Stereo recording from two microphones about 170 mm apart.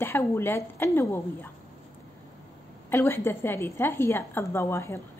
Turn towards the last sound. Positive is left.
turn(degrees=15)  # may be behind; listen again after turning